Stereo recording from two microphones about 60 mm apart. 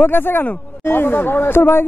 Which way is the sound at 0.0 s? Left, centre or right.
Left.